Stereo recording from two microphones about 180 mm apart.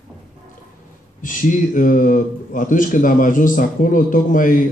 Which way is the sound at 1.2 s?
50° left (ahead or behind).